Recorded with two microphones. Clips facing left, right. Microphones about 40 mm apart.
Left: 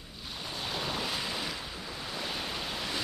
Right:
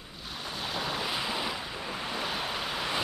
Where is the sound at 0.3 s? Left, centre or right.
Centre.